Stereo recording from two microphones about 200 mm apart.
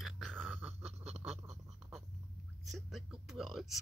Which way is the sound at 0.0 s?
Centre (ahead or behind).